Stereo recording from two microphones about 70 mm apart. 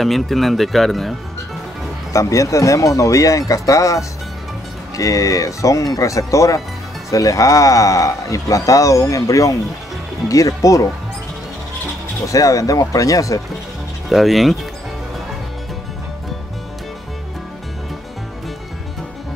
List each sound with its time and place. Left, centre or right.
0.0 s speech: centre
2.1 s speech: left
12.3 s speech: left
14.0 s speech: centre